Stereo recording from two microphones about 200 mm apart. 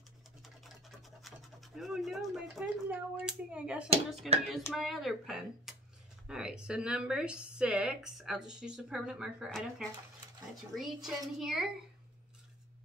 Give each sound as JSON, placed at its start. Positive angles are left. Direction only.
{"t": 0.4, "sound": "speech", "side_deg": 0}